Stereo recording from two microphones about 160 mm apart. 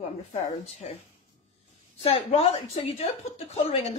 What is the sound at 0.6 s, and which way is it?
Speech, 40° left (ahead or behind).